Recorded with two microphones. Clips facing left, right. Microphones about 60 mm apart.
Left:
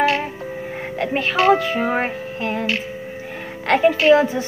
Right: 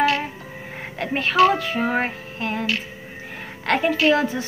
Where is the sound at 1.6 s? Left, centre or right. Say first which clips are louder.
Left 2 dB; centre.